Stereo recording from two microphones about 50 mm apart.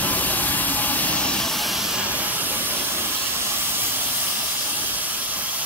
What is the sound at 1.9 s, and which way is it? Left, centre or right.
Steam, right.